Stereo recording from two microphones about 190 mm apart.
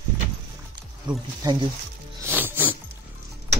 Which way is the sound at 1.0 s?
25° right (ahead or behind).